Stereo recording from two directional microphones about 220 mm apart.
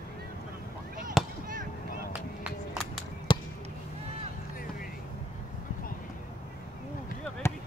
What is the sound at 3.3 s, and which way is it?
Basketball bounce, 20° left (ahead or behind).